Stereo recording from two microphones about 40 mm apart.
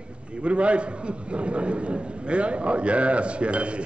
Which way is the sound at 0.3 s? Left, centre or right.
Right.